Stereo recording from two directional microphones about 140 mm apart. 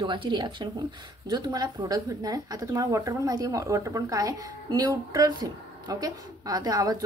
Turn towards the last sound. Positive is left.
turn(degrees=-25)  # may be behind; listen again after turning